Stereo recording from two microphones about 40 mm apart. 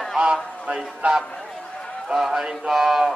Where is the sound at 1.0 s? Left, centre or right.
Right.